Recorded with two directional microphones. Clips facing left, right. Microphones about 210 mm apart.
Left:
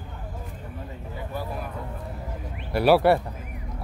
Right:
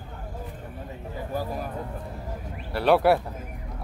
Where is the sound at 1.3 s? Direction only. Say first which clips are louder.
Right 3 dB; 40° right (ahead or behind).